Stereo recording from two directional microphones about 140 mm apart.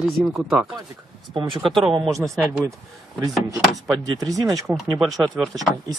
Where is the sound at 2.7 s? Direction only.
20° right (ahead or behind).